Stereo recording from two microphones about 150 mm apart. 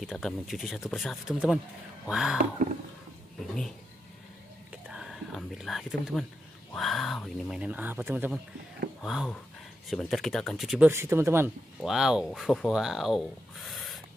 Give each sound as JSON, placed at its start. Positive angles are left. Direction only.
{"t": 0.0, "sound": "speech", "side_deg": 0}
{"t": 2.3, "sound": "speech", "side_deg": -65}
{"t": 4.8, "sound": "speech", "side_deg": -5}
{"t": 7.6, "sound": "speech", "side_deg": -10}
{"t": 9.0, "sound": "speech", "side_deg": 0}
{"t": 10.9, "sound": "speech", "side_deg": -15}
{"t": 11.8, "sound": "speech", "side_deg": -5}